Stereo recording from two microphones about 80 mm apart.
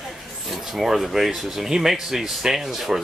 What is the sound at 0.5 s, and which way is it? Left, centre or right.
Speech, centre.